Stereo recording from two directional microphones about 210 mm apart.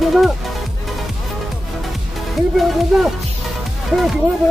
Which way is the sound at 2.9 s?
Centre (ahead or behind).